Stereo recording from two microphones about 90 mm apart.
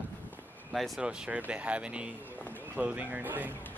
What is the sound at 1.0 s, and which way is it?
Speech, 10° right (ahead or behind).